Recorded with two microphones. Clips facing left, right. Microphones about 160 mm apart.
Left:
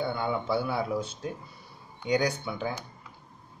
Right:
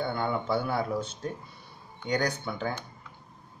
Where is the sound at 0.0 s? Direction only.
5° left (ahead or behind).